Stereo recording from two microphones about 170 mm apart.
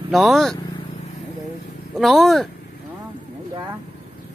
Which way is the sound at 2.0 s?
Centre (ahead or behind).